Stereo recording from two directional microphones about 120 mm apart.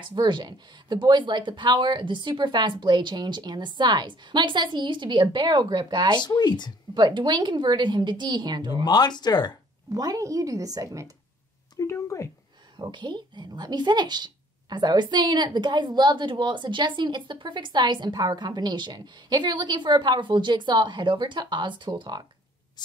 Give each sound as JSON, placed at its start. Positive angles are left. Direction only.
{"t": 0.1, "sound": "a woman's voice", "side_deg": -40}
{"t": 6.1, "sound": "speech", "side_deg": 35}
{"t": 6.9, "sound": "a woman's voice", "side_deg": -40}
{"t": 8.8, "sound": "speech", "side_deg": 35}
{"t": 9.9, "sound": "a woman's voice", "side_deg": -30}
{"t": 11.7, "sound": "speech", "side_deg": 25}
{"t": 12.7, "sound": "a woman's voice", "side_deg": -40}
{"t": 22.8, "sound": "spray", "side_deg": 35}